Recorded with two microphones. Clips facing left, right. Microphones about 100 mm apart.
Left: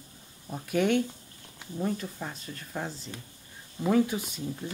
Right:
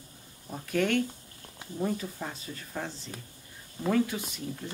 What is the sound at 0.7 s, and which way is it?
Speech, 10° left (ahead or behind).